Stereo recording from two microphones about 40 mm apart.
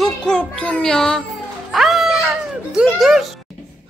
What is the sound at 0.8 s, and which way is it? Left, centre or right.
Speech, centre.